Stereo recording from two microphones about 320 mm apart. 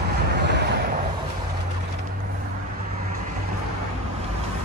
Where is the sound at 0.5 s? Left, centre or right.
Right.